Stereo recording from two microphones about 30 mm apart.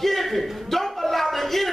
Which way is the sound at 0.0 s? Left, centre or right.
Centre.